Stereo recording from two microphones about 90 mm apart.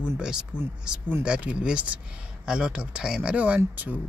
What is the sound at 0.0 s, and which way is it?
Speech, 10° right (ahead or behind).